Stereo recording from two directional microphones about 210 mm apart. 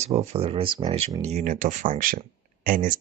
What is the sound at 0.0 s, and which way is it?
Speech, 30° right (ahead or behind).